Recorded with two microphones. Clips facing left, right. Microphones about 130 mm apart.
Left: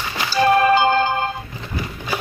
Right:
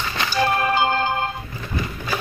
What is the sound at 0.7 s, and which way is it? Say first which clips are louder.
Music: left 4 dB; 90° left.